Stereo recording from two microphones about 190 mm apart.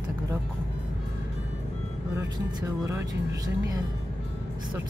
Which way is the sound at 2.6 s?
15° right (ahead or behind).